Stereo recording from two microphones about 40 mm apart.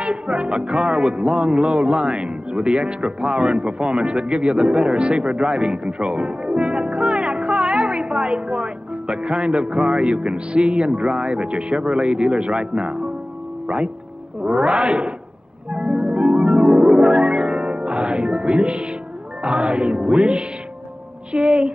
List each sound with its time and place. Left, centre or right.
0.0 s music: right
14.4 s music: right
16.7 s music: centre
17.0 s music: right